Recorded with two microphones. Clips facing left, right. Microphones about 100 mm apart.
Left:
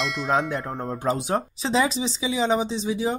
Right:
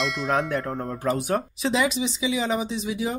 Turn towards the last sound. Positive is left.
turn(degrees=30)  # may be behind; listen again after turning